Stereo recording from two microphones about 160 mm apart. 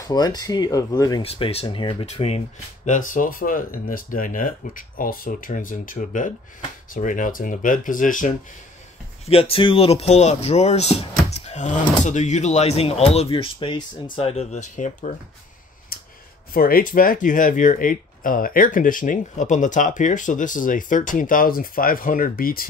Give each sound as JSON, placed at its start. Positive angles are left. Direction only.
{"t": 0.0, "sound": "speech", "side_deg": 25}
{"t": 1.2, "sound": "speech", "side_deg": 40}
{"t": 9.2, "sound": "speech", "side_deg": 35}
{"t": 15.9, "sound": "a sound", "side_deg": 65}
{"t": 16.5, "sound": "speech", "side_deg": 65}